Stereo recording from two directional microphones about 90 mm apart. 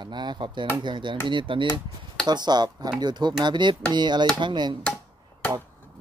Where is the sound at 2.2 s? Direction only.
50° right (ahead or behind).